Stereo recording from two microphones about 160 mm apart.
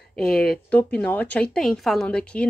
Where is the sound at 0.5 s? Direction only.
10° left (ahead or behind).